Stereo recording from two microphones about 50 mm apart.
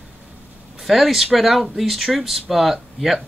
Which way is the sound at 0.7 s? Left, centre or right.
Centre.